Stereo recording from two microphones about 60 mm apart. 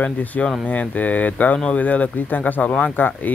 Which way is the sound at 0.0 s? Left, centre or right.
Left.